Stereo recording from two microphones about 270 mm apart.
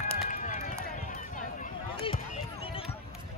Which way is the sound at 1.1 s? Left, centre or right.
Left.